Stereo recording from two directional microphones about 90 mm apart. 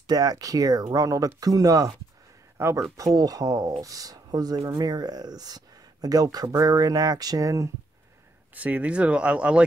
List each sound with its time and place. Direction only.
0.0 s speech: 45° right (ahead or behind)
3.0 s speech: 45° right (ahead or behind)
8.5 s speech: 15° right (ahead or behind)